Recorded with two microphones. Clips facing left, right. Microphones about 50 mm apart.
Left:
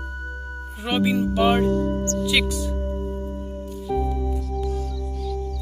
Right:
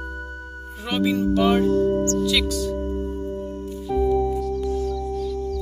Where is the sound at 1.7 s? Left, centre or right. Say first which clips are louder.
Right 4 dB; centre.